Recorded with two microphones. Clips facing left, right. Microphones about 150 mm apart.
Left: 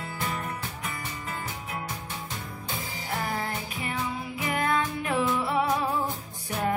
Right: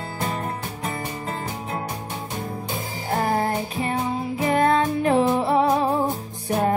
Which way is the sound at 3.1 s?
40° right (ahead or behind).